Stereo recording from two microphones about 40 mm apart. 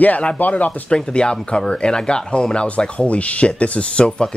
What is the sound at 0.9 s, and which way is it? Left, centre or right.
Speech, left.